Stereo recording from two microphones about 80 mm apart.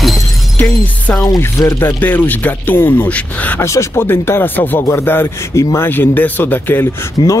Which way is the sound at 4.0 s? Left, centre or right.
Left.